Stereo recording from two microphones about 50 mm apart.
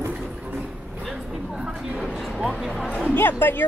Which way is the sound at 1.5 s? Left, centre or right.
Centre.